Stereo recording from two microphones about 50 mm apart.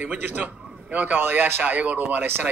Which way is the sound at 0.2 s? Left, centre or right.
Right.